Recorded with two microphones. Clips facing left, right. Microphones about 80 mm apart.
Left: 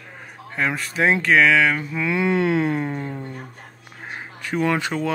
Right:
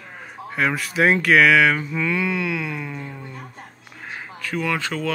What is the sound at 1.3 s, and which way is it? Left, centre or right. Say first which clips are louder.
Speech: right 1 dB; left.